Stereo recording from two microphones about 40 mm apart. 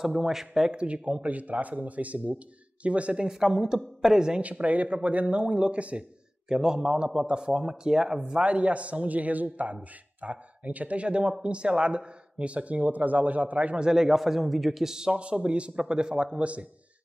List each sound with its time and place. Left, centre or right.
0.2 s a man's voice: centre
0.7 s speech: right
3.3 s a man's voice: centre
4.4 s speech: right
6.5 s a man's voice: centre; by 13.7 s right
13.7 s a man's voice: centre
15.1 s a man's voice: right